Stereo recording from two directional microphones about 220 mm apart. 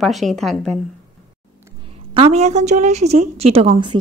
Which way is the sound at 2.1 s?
25° right (ahead or behind).